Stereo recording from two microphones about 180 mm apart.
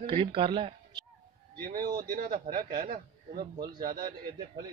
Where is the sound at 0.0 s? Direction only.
30° right (ahead or behind).